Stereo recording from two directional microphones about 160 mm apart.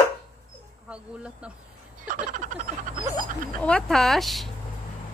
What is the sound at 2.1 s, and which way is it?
Frog, 55° right (ahead or behind).